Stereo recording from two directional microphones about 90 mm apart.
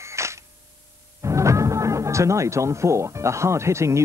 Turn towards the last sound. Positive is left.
turn(degrees=-30)  # may be behind; listen again after turning